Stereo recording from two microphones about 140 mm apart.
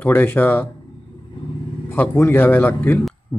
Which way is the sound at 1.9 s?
15° left (ahead or behind).